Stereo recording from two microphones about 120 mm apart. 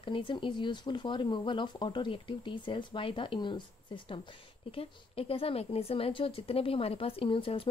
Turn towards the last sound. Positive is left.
turn(degrees=50)  # may be behind; listen again after turning